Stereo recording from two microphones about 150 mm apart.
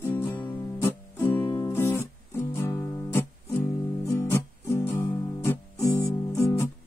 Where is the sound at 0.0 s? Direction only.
15° left (ahead or behind).